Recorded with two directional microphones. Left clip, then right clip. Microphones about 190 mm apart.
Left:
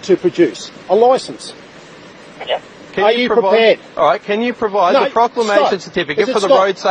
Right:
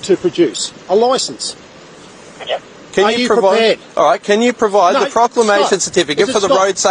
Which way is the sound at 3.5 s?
35° right (ahead or behind).